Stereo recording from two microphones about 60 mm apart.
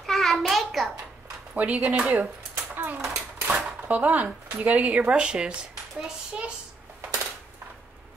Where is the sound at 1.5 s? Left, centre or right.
Right.